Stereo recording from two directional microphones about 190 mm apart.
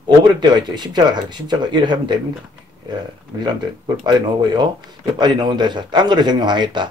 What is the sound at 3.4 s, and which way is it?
A man's voice, 20° right (ahead or behind).